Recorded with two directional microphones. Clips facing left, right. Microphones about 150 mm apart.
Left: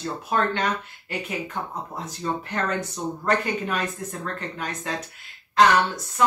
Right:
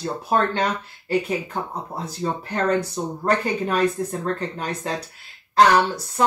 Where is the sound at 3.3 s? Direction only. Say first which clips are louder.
Right 3 dB; 35° right (ahead or behind).